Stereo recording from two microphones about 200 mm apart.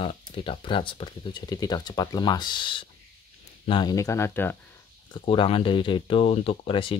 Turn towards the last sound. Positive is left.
turn(degrees=25)  # may be behind; listen again after turning